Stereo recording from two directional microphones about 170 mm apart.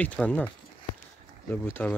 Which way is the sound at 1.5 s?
10° left (ahead or behind).